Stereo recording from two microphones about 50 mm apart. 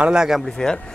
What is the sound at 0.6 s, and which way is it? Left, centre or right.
Speech, centre.